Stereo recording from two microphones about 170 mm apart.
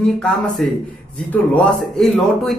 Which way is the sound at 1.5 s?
5° left (ahead or behind).